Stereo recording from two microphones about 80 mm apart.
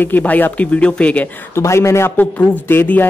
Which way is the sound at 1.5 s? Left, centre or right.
Left.